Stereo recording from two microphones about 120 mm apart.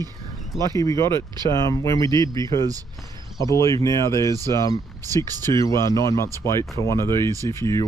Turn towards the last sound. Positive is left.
turn(degrees=25)  # may be behind; listen again after turning